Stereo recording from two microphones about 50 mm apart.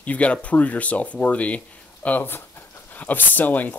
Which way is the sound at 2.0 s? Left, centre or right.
Left.